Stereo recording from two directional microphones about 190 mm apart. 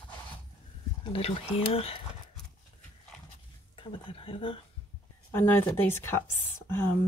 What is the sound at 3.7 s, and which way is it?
Speech, 25° left (ahead or behind).